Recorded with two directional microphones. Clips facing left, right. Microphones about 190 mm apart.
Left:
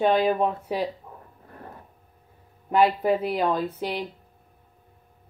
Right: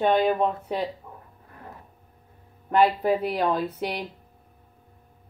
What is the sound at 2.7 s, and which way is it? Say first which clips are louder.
A woman's voice: even; centre (ahead or behind).